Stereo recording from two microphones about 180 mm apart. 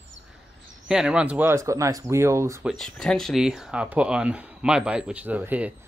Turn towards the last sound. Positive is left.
turn(degrees=-10)  # may be behind; listen again after turning